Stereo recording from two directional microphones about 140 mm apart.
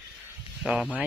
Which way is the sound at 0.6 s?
5° right (ahead or behind).